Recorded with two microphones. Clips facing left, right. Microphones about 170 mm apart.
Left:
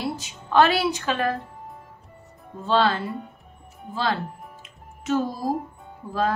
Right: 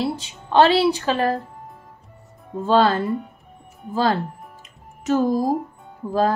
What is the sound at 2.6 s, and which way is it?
Speech, 45° right (ahead or behind).